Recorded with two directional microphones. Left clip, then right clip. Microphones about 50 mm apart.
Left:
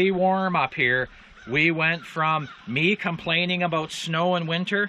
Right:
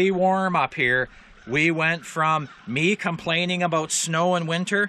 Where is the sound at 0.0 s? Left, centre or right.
Right.